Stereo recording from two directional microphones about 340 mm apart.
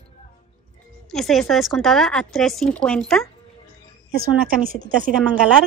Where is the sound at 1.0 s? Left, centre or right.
Centre.